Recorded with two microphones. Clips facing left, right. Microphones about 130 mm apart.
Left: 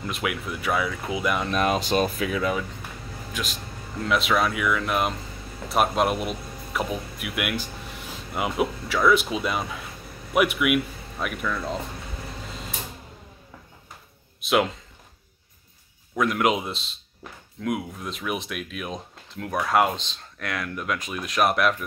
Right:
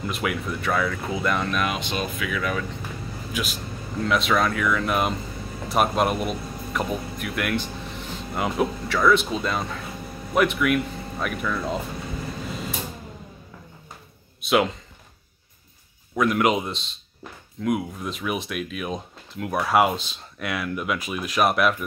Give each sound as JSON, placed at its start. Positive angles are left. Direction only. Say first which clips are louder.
{"t": 0.0, "sound": "speech", "louder": "right 2 dB", "side_deg": 0}
{"t": 1.5, "sound": "speech", "louder": "left 4 dB", "side_deg": 35}
{"t": 3.4, "sound": "speech", "louder": "right 3 dB", "side_deg": -5}
{"t": 14.4, "sound": "speech", "louder": "right 1 dB", "side_deg": 0}
{"t": 16.2, "sound": "speech", "louder": "right 2 dB", "side_deg": 0}